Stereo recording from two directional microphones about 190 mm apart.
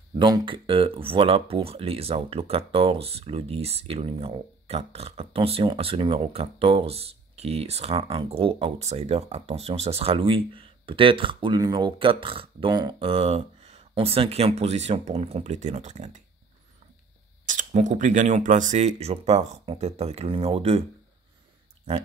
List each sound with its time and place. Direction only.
0.2 s speech: 25° right (ahead or behind); by 16.2 s 40° right (ahead or behind)
17.5 s speech: 40° right (ahead or behind)